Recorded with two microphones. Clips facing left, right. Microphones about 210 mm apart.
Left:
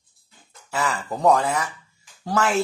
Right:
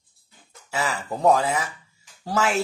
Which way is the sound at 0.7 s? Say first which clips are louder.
Left 1 dB; centre (ahead or behind).